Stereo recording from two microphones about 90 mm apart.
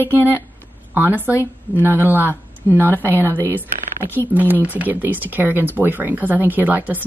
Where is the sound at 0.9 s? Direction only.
20° right (ahead or behind).